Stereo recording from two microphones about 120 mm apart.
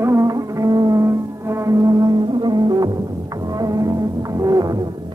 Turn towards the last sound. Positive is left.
turn(degrees=-30)  # may be behind; listen again after turning